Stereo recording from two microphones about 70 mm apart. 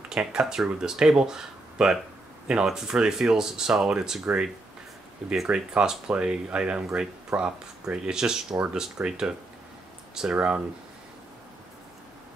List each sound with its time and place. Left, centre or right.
0.1 s speech: centre
5.3 s speech: centre
10.3 s speech: centre